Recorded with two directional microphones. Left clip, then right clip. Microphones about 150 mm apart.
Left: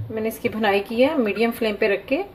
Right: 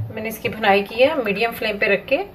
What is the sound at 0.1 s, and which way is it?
A woman's voice, 70° left (ahead or behind).